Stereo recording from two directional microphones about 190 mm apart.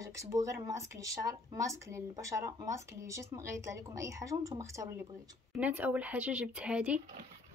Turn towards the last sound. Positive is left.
turn(degrees=-5)  # may be behind; listen again after turning